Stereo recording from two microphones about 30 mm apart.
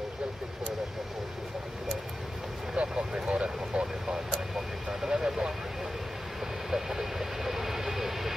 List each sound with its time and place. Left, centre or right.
2.7 s vehicle: right
4.6 s vehicle: centre
6.7 s vehicle: centre